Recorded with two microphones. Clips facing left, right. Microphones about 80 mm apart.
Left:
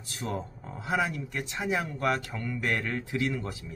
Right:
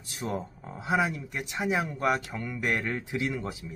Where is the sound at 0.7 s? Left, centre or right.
Centre.